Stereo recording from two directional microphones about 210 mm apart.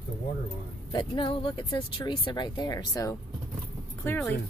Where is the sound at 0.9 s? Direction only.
25° left (ahead or behind).